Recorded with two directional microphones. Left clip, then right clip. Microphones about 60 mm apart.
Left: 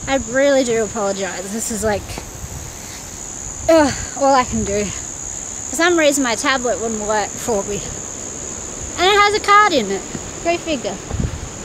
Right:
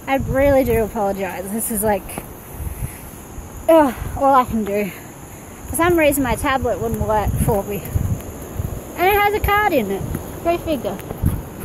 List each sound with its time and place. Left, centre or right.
0.3 s speech: centre
3.6 s speech: left
5.8 s speech: left
8.9 s speech: left
10.4 s speech: left